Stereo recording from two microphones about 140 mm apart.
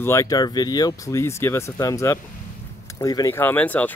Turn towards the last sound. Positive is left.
turn(degrees=10)  # may be behind; listen again after turning